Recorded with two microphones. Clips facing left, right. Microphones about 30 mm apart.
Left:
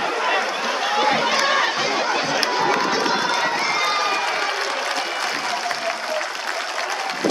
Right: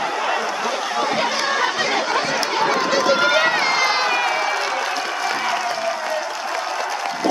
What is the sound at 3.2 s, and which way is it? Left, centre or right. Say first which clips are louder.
Run: right 4 dB; right.